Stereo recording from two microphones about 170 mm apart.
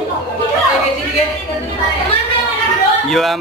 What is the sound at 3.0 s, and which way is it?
Speech, centre (ahead or behind).